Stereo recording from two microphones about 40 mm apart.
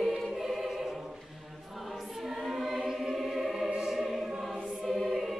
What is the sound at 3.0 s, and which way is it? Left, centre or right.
Music, centre.